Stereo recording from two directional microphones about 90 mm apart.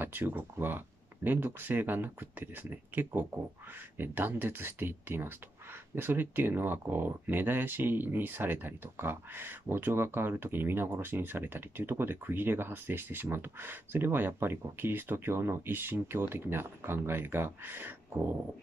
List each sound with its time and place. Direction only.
0.0 s speech: 20° right (ahead or behind)